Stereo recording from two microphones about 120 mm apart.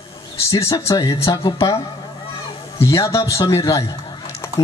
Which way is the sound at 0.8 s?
25° left (ahead or behind).